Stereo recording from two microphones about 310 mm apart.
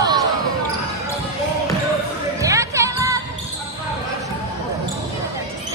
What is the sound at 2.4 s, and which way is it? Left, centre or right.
Music, centre.